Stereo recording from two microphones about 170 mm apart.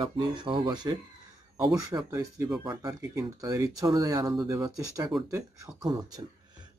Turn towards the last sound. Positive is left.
turn(degrees=-25)  # may be behind; listen again after turning